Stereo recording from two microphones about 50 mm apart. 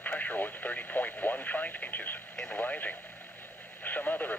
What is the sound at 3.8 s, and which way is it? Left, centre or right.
Radio, left.